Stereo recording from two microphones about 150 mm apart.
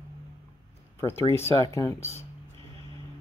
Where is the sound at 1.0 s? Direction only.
15° left (ahead or behind).